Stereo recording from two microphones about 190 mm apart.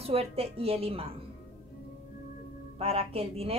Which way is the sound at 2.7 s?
30° right (ahead or behind).